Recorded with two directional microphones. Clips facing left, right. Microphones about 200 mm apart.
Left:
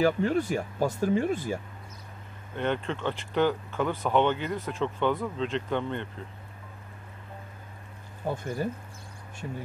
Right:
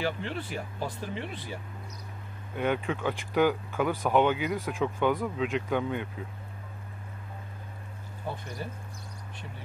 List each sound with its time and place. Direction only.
0.0 s speech: 45° left (ahead or behind)
2.5 s speech: 10° right (ahead or behind)
8.2 s speech: 45° left (ahead or behind)